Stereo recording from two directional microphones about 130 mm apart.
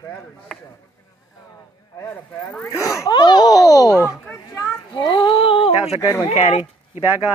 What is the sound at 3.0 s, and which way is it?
Speech, 35° left (ahead or behind).